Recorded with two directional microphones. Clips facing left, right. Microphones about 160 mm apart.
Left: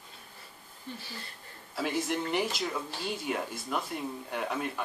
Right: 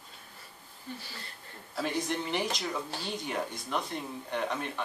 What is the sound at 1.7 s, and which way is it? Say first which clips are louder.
A man's voice: left 1 dB; 5° left (ahead or behind).